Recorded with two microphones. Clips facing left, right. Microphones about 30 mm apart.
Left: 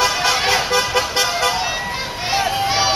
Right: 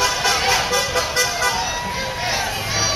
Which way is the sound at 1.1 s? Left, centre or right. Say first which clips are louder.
Left 2 dB; left.